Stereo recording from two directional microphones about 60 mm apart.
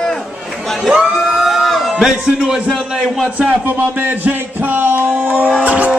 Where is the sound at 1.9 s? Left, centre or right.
Centre.